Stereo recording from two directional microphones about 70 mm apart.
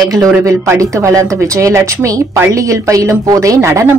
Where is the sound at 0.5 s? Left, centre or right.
Right.